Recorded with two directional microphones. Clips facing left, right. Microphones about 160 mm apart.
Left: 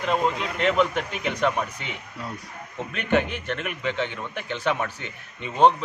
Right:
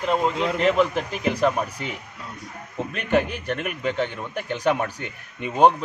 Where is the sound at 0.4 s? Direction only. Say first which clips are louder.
Right 3 dB; 35° right (ahead or behind).